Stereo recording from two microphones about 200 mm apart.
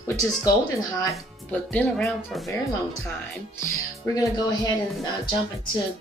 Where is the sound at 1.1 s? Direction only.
5° left (ahead or behind).